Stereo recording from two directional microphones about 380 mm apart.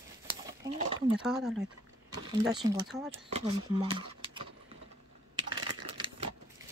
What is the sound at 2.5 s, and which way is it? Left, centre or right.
Speech, centre.